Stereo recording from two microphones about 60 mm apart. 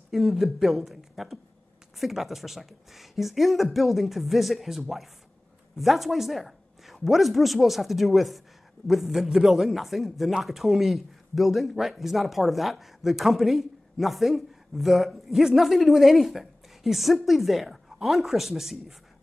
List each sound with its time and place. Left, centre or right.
0.1 s a man's voice: centre